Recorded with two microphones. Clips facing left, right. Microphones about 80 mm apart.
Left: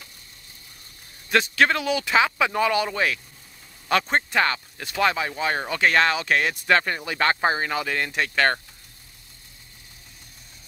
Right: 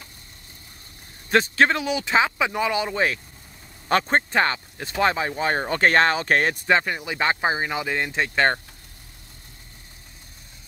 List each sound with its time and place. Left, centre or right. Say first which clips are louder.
1.3 s speech: right 1 dB; right
6.7 s speech: left 2 dB; centre